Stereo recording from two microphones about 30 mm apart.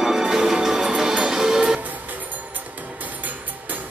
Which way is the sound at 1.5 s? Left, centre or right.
Right.